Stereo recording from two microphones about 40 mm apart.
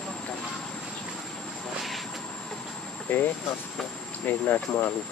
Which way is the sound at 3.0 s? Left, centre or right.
Left.